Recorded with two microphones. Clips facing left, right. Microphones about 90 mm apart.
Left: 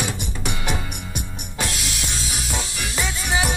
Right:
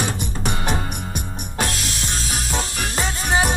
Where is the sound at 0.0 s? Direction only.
40° right (ahead or behind).